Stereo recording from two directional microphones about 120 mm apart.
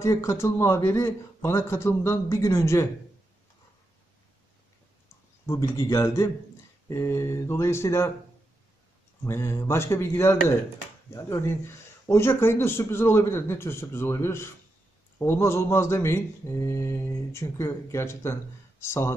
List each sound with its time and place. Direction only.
0.0 s speech: 25° left (ahead or behind)
5.5 s speech: 25° left (ahead or behind)
9.2 s speech: 20° left (ahead or behind)